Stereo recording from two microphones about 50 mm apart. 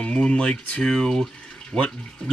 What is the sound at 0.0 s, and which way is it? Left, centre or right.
Speech, left.